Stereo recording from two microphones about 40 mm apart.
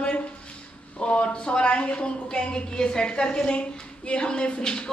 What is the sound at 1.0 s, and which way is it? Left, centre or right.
Speech, left.